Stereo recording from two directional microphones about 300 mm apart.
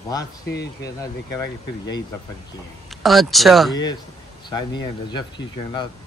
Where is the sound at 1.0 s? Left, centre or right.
Centre.